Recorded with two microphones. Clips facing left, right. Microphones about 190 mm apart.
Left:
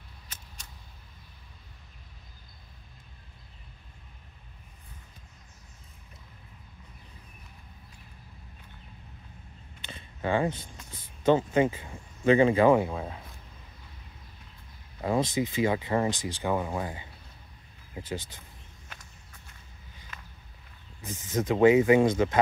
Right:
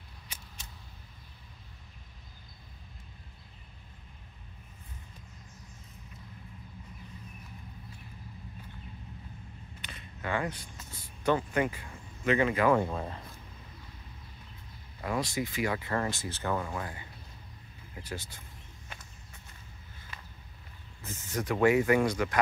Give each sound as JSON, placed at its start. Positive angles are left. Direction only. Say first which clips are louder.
{"t": 9.8, "sound": "a sound", "louder": "left 6 dB", "side_deg": 25}
{"t": 12.7, "sound": "speech", "louder": "left 3 dB", "side_deg": 0}
{"t": 15.0, "sound": "speech", "louder": "left 5 dB", "side_deg": 25}
{"t": 21.0, "sound": "speech", "louder": "left 5 dB", "side_deg": 15}